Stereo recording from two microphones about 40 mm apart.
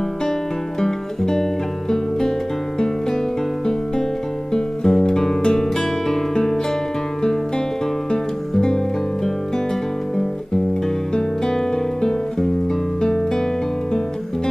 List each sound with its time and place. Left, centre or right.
0.7 s music: centre
4.6 s music: centre
8.1 s music: centre
11.1 s guitar: centre
13.0 s music: centre